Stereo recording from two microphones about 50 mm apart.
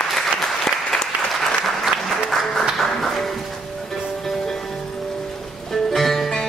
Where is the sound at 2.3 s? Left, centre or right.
Centre.